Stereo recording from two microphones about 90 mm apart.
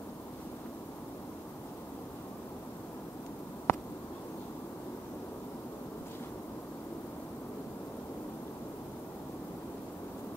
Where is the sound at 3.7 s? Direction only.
25° left (ahead or behind).